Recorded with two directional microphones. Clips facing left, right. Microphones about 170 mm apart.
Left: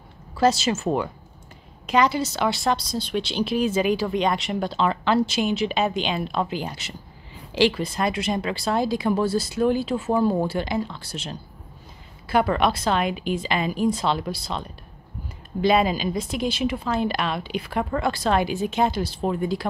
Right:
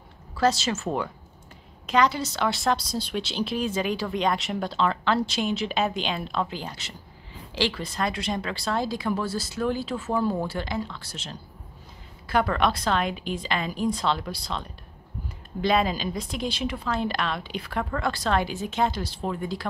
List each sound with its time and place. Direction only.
0.4 s a woman's voice: 10° left (ahead or behind)